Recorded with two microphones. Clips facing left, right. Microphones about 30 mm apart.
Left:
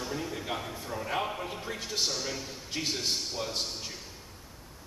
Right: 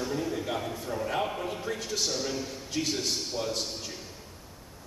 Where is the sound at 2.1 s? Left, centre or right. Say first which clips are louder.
Right 3 dB; centre.